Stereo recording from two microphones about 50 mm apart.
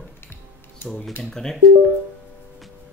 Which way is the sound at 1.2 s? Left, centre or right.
Centre.